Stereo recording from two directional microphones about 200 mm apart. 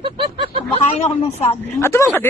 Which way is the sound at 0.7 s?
30° left (ahead or behind).